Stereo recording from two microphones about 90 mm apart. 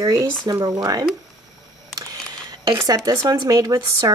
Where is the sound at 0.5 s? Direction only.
50° right (ahead or behind).